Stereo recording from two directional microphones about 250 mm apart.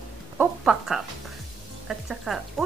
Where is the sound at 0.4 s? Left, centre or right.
Centre.